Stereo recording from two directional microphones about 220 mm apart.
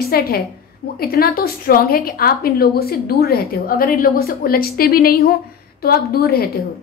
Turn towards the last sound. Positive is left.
turn(degrees=45)  # may be behind; listen again after turning